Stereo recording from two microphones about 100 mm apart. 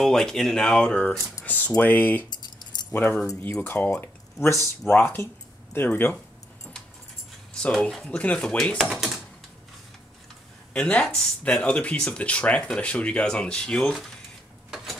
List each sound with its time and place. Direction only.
0.0 s speech: 5° left (ahead or behind)
2.2 s keys jangling: 45° left (ahead or behind)
2.9 s speech: 20° left (ahead or behind)
8.0 s speech: 10° left (ahead or behind)
10.7 s speech: 10° left (ahead or behind)